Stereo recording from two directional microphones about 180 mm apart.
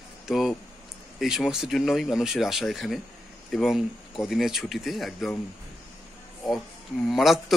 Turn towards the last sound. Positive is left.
turn(degrees=0)  # may be behind; listen again after turning